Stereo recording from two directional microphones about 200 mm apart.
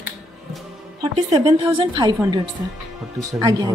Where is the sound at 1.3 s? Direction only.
30° right (ahead or behind).